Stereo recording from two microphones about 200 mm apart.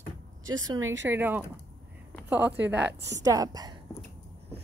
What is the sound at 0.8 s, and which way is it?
Speech, 75° right (ahead or behind).